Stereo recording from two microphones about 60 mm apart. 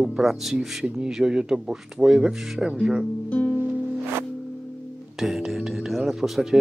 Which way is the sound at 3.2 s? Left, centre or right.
Left.